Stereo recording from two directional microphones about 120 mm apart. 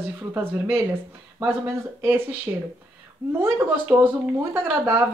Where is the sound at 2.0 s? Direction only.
15° right (ahead or behind).